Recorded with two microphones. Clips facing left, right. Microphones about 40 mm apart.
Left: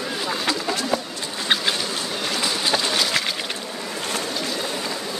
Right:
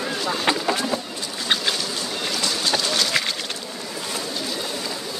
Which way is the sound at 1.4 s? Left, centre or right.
Centre.